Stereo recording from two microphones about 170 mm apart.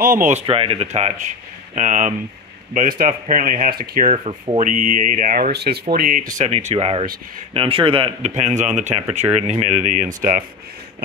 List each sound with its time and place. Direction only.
0.0 s a man's voice: 50° right (ahead or behind)
4.1 s a man's voice: 40° right (ahead or behind)
4.6 s a man's voice: 50° right (ahead or behind)